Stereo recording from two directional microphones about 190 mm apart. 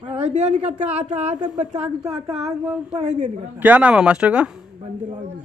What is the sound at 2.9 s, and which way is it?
Speech, 35° right (ahead or behind).